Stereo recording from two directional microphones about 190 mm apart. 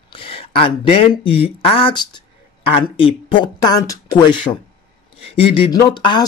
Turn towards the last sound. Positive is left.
turn(degrees=25)  # may be behind; listen again after turning